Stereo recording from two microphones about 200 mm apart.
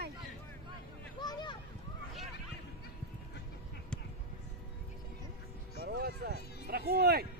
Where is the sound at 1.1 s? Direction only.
20° left (ahead or behind).